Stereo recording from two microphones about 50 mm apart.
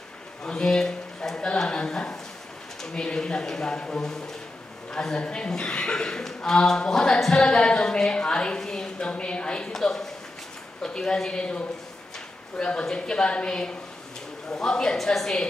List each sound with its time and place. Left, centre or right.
0.4 s a man's voice: centre
9.8 s a woman's voice: centre